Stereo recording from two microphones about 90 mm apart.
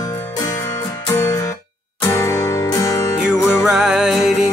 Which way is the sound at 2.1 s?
35° left (ahead or behind).